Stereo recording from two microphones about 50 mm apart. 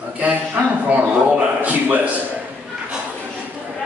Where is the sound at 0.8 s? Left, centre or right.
Right.